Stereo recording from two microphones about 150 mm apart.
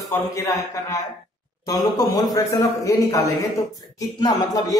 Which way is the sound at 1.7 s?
25° left (ahead or behind).